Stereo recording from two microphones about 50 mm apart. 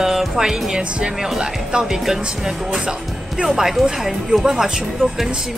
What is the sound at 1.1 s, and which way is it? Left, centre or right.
Speech, centre.